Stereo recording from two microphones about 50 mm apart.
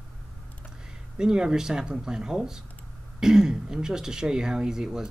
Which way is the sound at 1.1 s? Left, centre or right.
Centre.